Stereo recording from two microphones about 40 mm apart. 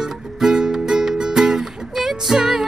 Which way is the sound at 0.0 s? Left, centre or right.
Centre.